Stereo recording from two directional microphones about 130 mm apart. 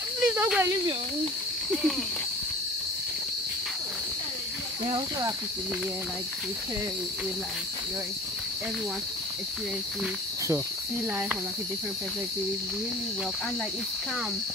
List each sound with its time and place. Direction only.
0.2 s snake: 10° right (ahead or behind)
1.7 s speech: 5° left (ahead or behind)
4.8 s speech: 35° right (ahead or behind)